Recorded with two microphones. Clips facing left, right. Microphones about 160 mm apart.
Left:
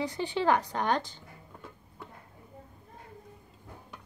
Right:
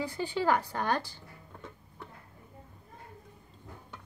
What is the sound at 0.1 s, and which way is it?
Speech, 20° left (ahead or behind).